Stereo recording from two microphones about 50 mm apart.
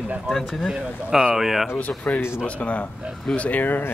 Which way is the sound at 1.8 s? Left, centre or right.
Left.